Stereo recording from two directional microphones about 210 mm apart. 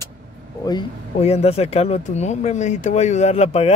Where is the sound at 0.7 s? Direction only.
25° left (ahead or behind).